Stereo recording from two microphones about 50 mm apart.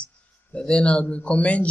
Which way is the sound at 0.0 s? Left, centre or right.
Left.